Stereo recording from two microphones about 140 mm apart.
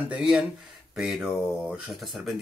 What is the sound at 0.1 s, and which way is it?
Speech, 5° right (ahead or behind).